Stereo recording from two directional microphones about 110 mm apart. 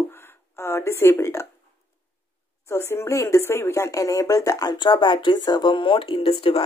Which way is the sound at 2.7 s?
25° left (ahead or behind).